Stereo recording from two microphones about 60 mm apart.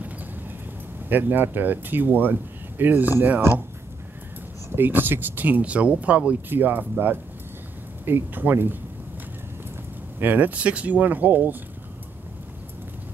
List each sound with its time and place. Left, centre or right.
1.0 s speech: right
4.7 s speech: right
10.1 s speech: right